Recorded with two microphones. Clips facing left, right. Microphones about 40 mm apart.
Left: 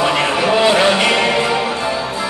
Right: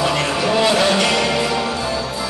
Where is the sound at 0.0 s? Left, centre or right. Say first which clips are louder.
Left 3 dB; left.